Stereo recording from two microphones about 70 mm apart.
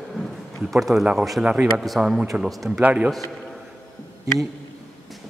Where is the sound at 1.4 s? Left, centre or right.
Centre.